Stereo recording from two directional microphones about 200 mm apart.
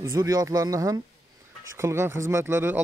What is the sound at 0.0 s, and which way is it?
Speech, 15° right (ahead or behind).